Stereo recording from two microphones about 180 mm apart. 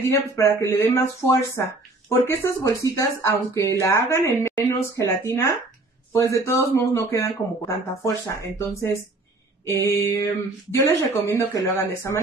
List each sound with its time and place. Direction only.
0.1 s speech: 15° left (ahead or behind)